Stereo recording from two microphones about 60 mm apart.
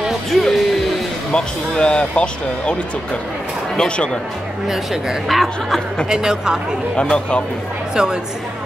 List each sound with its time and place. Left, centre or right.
0.3 s music: centre
1.3 s speech: centre
4.6 s speech: centre
6.0 s speech: centre
7.0 s speech: centre
7.9 s a woman's voice: centre